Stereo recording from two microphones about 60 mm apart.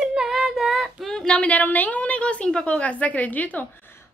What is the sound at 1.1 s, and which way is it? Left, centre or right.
A woman's voice, centre.